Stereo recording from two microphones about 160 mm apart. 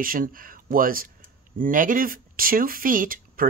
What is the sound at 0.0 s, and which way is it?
Speech, 60° right (ahead or behind).